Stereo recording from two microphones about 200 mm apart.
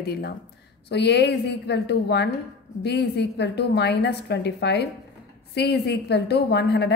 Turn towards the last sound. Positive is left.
turn(degrees=55)  # may be behind; listen again after turning